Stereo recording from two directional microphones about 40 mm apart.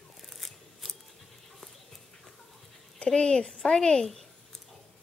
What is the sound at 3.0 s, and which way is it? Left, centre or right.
Speech, centre.